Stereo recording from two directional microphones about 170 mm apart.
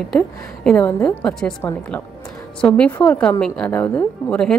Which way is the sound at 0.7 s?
10° left (ahead or behind).